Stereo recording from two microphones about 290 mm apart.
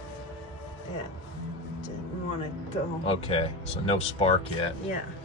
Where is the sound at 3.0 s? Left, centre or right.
Centre.